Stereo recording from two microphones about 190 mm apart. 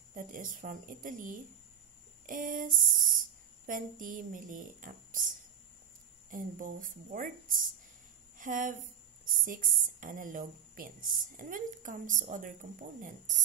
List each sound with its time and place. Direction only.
0.1 s speech: 45° right (ahead or behind)